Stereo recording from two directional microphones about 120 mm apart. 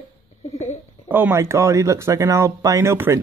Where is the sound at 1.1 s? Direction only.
20° right (ahead or behind).